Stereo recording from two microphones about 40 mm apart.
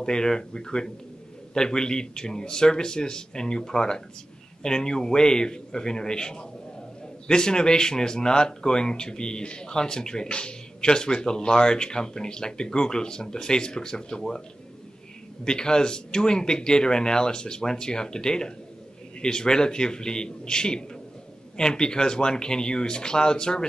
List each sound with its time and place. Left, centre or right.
0.0 s speech: centre
15.4 s speech: centre